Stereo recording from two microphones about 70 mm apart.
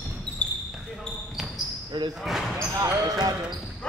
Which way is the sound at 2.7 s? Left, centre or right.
Right.